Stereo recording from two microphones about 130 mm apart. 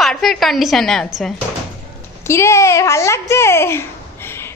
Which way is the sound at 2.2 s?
20° left (ahead or behind).